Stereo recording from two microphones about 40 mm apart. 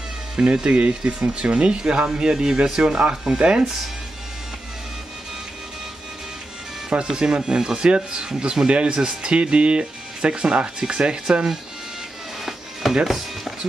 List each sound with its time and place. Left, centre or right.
0.4 s speech: right
6.9 s speech: right
12.8 s speech: centre